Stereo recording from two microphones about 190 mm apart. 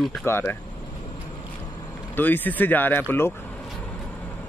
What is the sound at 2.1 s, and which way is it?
Speech, 10° left (ahead or behind).